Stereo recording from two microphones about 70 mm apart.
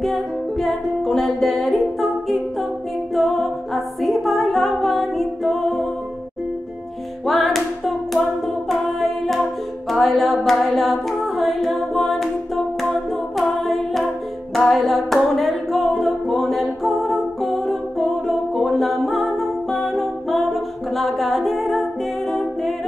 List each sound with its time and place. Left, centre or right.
0.0 s music: centre
7.2 s hands: centre
8.6 s music: centre
22.3 s a capella: centre